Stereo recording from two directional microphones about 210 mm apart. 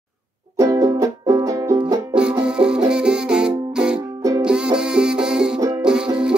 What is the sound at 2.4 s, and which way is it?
Music, 5° right (ahead or behind).